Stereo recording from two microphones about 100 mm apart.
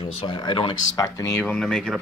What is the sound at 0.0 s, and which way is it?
Speech, 70° left (ahead or behind).